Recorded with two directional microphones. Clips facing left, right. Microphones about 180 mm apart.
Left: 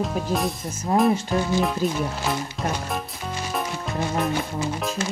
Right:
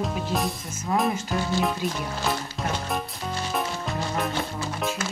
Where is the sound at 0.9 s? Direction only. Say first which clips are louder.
Left 4 dB; 30° left (ahead or behind).